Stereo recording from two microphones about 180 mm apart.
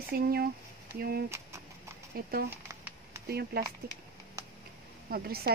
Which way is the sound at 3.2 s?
60° right (ahead or behind).